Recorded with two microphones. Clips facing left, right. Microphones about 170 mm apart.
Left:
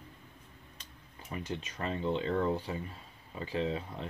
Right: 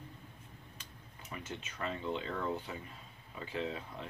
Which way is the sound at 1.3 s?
35° left (ahead or behind).